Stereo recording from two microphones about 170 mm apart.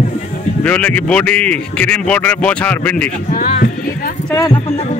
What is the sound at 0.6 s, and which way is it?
A man's voice, 10° left (ahead or behind).